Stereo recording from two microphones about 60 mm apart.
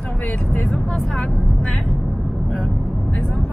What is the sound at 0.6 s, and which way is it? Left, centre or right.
Speech, centre.